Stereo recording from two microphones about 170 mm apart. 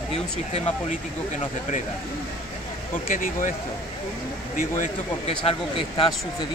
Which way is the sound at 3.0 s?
55° left (ahead or behind).